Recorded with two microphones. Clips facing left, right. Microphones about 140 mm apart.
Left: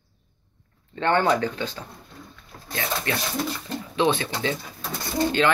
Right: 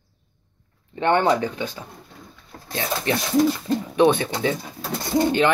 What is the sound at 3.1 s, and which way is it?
Speech, 20° right (ahead or behind).